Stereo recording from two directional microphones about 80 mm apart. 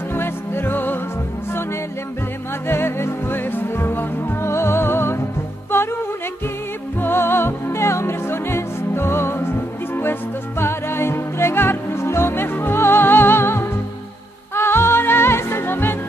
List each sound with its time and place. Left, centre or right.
0.1 s music: left
2.7 s music: left
7.0 s music: left
10.6 s music: left